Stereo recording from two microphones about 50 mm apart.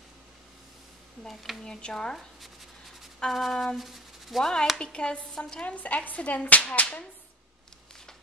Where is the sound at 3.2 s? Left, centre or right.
Centre.